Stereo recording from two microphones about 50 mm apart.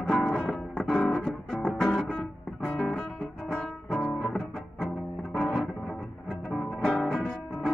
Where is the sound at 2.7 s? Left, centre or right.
Centre.